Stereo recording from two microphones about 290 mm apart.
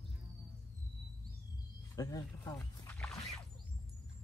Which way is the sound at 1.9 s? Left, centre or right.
Centre.